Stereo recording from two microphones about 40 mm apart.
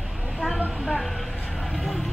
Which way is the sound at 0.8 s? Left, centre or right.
Centre.